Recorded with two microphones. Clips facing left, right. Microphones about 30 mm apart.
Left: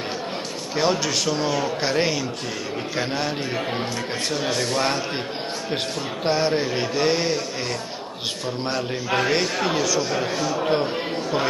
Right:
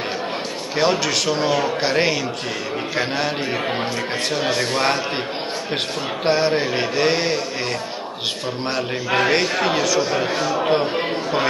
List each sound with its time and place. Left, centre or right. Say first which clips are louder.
0.7 s a man's voice: right 3 dB; right
6.2 s a man's voice: right 3 dB; right
8.6 s a man's voice: right 3 dB; right